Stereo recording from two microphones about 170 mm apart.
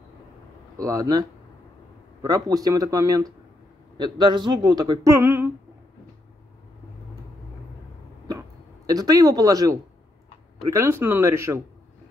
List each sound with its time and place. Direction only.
0.7 s a man's voice: 20° right (ahead or behind)
2.2 s a man's voice: 20° right (ahead or behind)
8.3 s a sound: 20° right (ahead or behind)
10.6 s speech: 15° right (ahead or behind)